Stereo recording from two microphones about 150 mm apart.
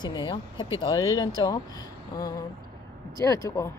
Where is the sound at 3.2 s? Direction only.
20° left (ahead or behind).